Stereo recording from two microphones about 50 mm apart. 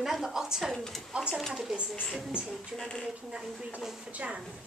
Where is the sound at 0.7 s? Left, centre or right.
Centre.